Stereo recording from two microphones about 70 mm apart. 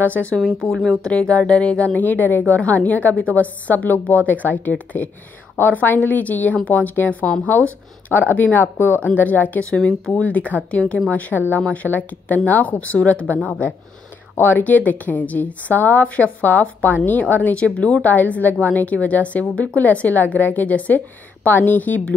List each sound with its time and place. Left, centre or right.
0.0 s a woman's voice: left
14.3 s a woman's voice: left